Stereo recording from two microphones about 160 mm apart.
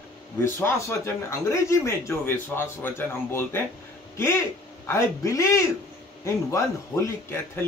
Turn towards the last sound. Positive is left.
turn(degrees=15)  # may be behind; listen again after turning